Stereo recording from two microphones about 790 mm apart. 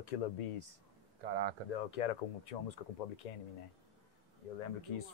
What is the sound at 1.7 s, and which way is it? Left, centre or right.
Speech, left.